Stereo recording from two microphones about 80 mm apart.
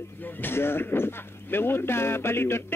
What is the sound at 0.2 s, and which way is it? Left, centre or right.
Speech, left.